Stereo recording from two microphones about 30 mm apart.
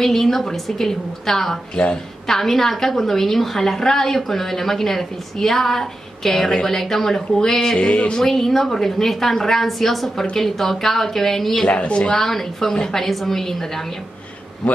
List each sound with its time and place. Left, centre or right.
0.0 s a woman's voice: centre
7.7 s speech: left
8.2 s a woman's voice: centre
11.6 s speech: left
12.2 s a woman's voice: centre